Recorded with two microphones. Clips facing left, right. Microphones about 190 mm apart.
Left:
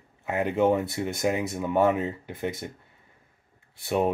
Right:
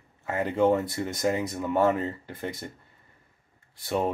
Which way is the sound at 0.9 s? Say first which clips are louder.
Left 1 dB; 5° left (ahead or behind).